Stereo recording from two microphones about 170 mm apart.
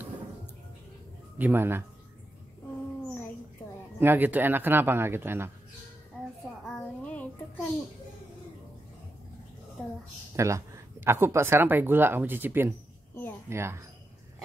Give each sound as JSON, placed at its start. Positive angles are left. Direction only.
{"t": 1.4, "sound": "speech", "side_deg": -10}
{"t": 4.0, "sound": "speech", "side_deg": -10}
{"t": 6.6, "sound": "child singing", "side_deg": 5}
{"t": 10.3, "sound": "speech", "side_deg": -15}